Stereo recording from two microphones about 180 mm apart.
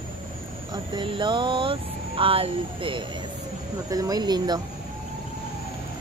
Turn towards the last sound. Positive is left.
turn(degrees=-25)  # may be behind; listen again after turning